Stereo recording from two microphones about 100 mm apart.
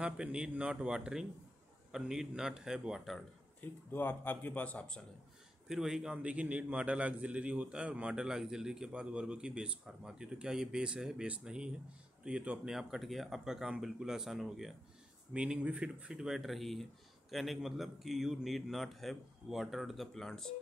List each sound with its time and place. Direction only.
0.0 s a man's voice: 10° right (ahead or behind)
3.6 s speech: 20° left (ahead or behind)
5.7 s a man's voice: 5° right (ahead or behind)